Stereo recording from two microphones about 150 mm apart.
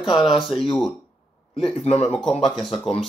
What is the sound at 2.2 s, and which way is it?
Speech, centre (ahead or behind).